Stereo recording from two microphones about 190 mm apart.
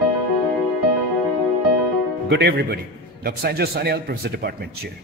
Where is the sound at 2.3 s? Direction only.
60° right (ahead or behind).